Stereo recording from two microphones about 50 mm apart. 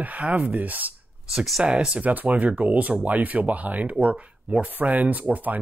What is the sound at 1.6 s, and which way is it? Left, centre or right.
Speech, centre.